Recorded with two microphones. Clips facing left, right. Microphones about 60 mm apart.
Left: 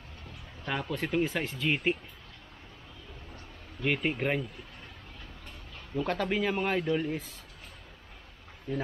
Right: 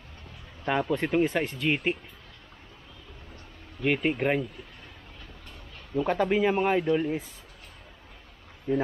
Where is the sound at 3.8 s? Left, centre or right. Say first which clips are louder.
Right 4 dB; centre.